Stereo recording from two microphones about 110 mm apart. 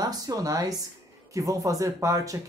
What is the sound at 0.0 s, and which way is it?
Speech, 35° right (ahead or behind).